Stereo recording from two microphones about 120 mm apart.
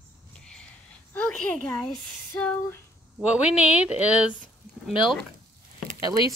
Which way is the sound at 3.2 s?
10° right (ahead or behind).